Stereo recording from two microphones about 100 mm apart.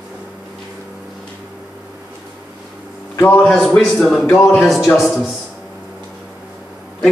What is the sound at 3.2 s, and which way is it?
Speech, 15° left (ahead or behind).